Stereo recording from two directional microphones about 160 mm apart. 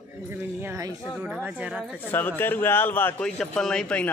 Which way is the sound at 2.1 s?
10° left (ahead or behind).